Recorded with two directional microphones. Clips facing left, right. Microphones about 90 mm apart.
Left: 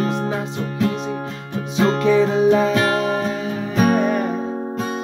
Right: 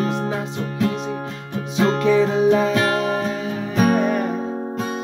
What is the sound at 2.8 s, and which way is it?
Music, 20° left (ahead or behind).